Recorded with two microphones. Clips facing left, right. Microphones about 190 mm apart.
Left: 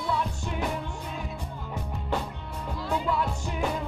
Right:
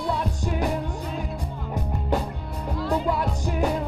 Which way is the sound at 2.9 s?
40° right (ahead or behind).